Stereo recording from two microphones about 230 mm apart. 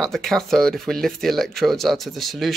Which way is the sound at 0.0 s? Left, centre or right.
Centre.